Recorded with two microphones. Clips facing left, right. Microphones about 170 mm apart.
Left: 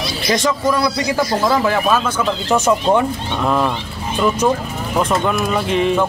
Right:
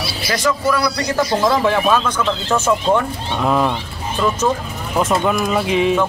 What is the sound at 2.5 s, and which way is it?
Speech, 15° left (ahead or behind).